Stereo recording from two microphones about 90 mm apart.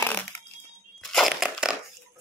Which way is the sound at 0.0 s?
20° left (ahead or behind).